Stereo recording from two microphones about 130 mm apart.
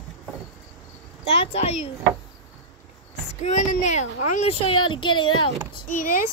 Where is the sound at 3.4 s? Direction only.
65° left (ahead or behind); by 5.5 s 40° left (ahead or behind).